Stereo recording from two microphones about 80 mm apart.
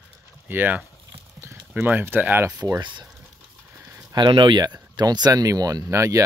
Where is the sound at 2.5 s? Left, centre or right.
Right.